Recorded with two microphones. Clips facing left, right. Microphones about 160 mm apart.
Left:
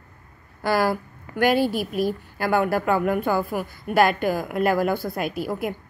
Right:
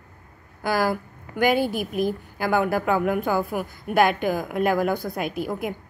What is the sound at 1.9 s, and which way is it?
A woman's voice, centre (ahead or behind).